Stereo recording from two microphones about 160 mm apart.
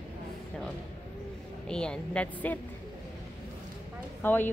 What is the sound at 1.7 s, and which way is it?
Speech, 5° left (ahead or behind).